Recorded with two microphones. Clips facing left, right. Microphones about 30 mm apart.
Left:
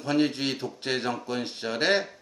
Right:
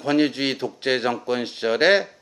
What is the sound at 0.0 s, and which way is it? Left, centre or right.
Speech, right.